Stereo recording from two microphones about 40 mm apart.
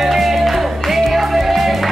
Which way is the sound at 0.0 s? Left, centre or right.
Centre.